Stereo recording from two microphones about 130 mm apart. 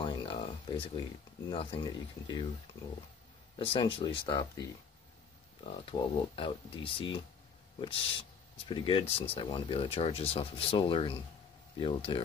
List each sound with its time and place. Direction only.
0.0 s a sound: 40° left (ahead or behind)
1.5 s speech: 40° left (ahead or behind)
3.5 s speech: 40° left (ahead or behind)